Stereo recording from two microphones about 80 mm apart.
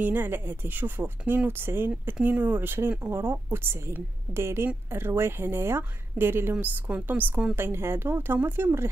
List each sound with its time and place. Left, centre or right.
0.0 s speech: right